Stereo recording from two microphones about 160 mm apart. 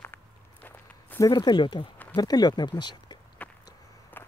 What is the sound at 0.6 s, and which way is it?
Walk, 10° left (ahead or behind).